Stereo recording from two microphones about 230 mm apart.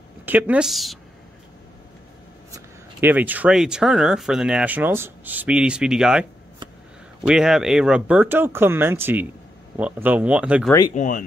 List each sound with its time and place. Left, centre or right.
0.2 s a woman's voice: centre
2.5 s speech: centre
7.2 s speech: centre
11.0 s speech: left